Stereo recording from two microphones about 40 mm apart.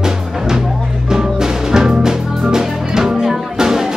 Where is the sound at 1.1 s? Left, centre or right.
Centre.